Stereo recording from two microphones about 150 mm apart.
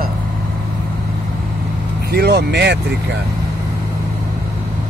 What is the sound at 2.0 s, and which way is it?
Vehicle, 90° right.